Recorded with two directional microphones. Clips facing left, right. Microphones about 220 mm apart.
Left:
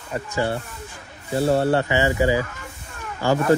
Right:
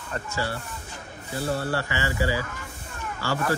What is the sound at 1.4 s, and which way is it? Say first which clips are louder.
Speech: left 9 dB; 25° left (ahead or behind).